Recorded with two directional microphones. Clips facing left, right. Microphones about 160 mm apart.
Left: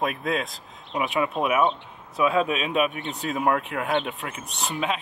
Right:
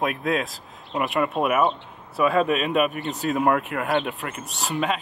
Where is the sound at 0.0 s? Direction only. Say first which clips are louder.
Right 2 dB; centre (ahead or behind).